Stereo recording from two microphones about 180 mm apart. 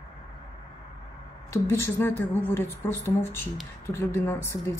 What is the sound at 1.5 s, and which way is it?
Speech, 15° left (ahead or behind).